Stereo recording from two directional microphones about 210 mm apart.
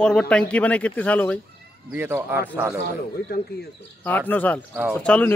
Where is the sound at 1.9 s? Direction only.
10° right (ahead or behind).